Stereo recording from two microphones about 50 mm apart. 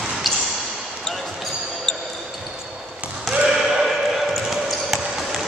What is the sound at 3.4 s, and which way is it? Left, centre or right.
Basketball bounce, centre.